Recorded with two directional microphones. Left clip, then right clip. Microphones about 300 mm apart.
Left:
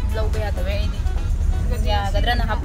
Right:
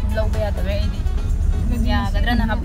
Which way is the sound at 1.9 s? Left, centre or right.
Centre.